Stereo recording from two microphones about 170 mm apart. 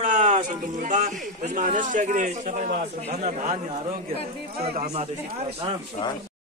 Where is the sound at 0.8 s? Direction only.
45° right (ahead or behind).